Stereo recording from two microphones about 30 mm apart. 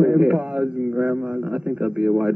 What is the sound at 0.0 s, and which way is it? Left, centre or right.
A man's voice, right.